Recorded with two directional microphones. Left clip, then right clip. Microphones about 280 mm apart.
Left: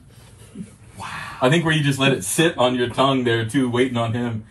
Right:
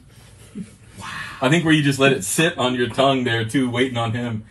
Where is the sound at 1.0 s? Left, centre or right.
Centre.